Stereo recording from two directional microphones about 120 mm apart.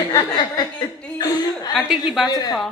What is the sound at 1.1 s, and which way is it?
Chuckle, 35° left (ahead or behind).